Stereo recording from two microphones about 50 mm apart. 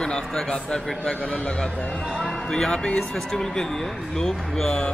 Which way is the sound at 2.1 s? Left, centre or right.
Centre.